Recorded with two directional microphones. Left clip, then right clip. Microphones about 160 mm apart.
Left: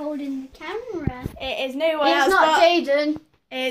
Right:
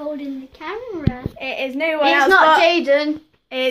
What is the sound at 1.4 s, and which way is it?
Speech, 5° left (ahead or behind).